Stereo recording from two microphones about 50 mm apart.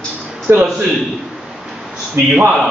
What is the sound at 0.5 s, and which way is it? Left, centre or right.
Speech, right.